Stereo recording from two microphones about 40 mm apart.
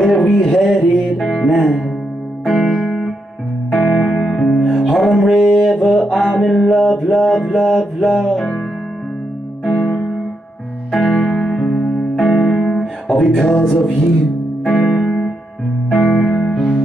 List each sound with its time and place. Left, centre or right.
0.3 s music: centre
4.9 s music: centre
5.6 s mantra: centre
9.7 s music: centre
10.9 s music: centre